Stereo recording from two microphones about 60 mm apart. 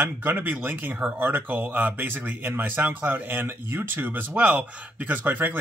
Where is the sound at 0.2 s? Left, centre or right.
Right.